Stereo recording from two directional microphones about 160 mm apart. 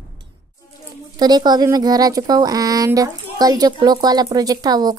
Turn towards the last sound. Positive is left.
turn(degrees=-25)  # may be behind; listen again after turning